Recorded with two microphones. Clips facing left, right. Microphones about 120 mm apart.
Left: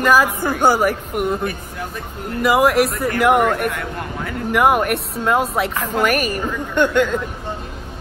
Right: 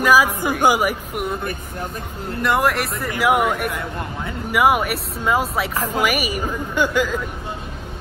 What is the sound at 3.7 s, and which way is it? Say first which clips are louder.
Speech: left 1 dB; 20° right (ahead or behind).